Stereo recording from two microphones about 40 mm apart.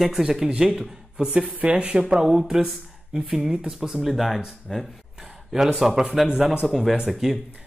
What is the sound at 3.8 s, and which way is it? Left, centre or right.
Speech, centre.